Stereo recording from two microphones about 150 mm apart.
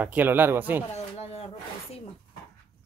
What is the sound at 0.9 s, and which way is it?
Speech, 45° left (ahead or behind).